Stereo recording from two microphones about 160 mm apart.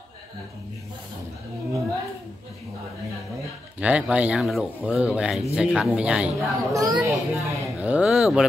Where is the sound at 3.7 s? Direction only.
10° right (ahead or behind).